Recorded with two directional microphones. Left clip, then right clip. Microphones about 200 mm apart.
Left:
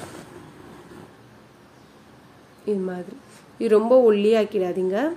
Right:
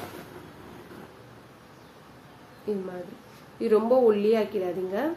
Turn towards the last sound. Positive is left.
turn(degrees=50)  # may be behind; listen again after turning